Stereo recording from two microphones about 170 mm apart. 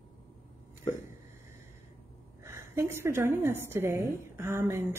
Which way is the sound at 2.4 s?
15° right (ahead or behind).